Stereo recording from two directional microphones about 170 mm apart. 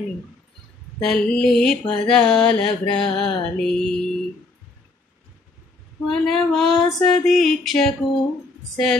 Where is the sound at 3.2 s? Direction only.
25° left (ahead or behind).